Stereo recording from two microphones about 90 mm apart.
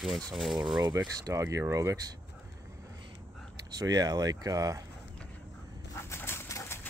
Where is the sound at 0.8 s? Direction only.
45° right (ahead or behind).